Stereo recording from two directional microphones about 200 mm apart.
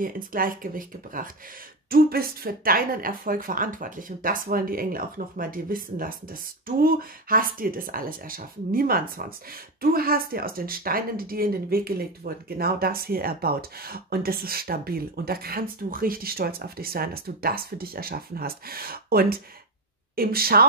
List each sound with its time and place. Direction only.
0.0 s speech: 45° right (ahead or behind)